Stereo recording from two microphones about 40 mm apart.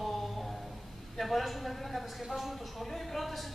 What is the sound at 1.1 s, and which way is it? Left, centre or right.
A woman's voice, centre.